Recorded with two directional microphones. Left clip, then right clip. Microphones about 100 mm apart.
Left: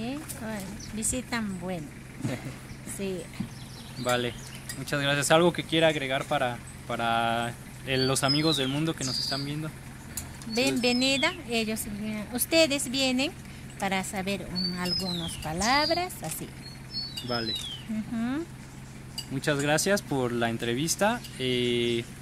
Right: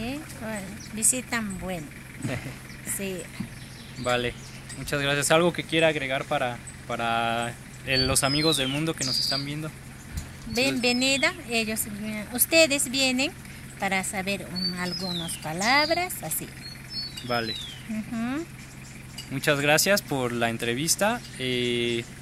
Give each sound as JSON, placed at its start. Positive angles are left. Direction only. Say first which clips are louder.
{"t": 0.0, "sound": "speech", "louder": "right 2 dB", "side_deg": -15}
{"t": 3.0, "sound": "speech", "louder": "left 1 dB", "side_deg": -10}
{"t": 10.5, "sound": "speech", "louder": "right 2 dB", "side_deg": 0}
{"t": 17.3, "sound": "speech", "louder": "right 4 dB", "side_deg": -35}
{"t": 18.1, "sound": "speech", "louder": "right 1 dB", "side_deg": -15}
{"t": 19.3, "sound": "speech", "louder": "right 4 dB", "side_deg": -30}